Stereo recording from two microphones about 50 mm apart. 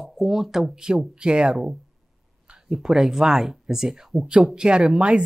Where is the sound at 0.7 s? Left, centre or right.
Centre.